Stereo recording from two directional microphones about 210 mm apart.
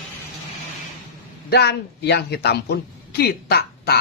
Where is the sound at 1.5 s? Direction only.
50° left (ahead or behind).